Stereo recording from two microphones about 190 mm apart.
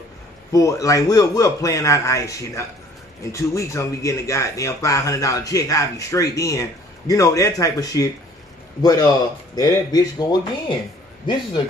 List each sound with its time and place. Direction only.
0.5 s speech: 15° left (ahead or behind)